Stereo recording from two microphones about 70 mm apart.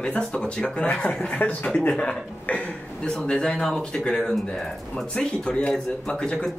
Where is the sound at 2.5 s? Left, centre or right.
Centre.